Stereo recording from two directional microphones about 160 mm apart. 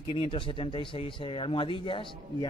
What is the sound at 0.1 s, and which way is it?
A man's voice, 30° left (ahead or behind).